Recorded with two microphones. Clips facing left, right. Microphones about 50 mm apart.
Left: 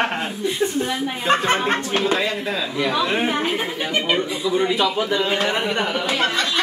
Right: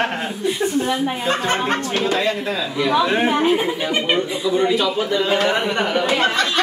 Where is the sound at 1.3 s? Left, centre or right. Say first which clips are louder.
Left 3 dB; left.